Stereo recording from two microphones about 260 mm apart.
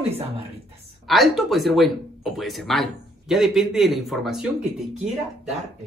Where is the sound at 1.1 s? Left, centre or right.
Centre.